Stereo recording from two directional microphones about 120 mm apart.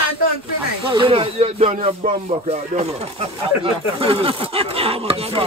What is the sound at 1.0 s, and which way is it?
Speech, 55° right (ahead or behind).